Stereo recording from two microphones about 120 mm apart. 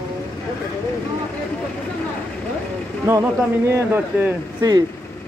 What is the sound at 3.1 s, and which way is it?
Speech, 20° right (ahead or behind).